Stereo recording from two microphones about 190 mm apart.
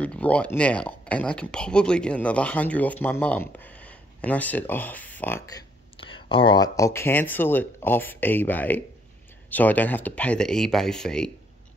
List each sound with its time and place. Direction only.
0.0 s speech: 5° left (ahead or behind)
5.9 s a sound: 25° left (ahead or behind)
6.8 s speech: 15° left (ahead or behind)